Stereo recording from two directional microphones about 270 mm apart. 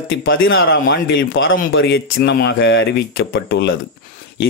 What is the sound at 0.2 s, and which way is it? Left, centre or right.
Speech, left.